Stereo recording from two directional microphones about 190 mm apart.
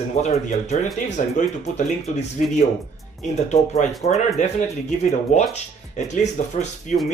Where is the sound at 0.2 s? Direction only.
35° left (ahead or behind).